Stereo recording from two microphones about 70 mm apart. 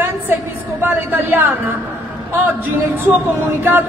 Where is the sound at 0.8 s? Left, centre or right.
Right.